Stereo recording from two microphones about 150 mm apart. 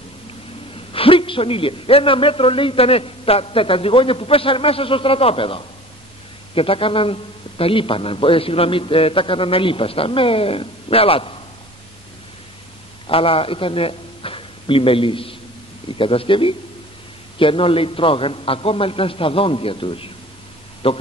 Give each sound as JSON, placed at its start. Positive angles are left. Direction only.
{"t": 0.9, "sound": "a man's voice", "side_deg": 35}
{"t": 13.0, "sound": "a man's voice", "side_deg": 35}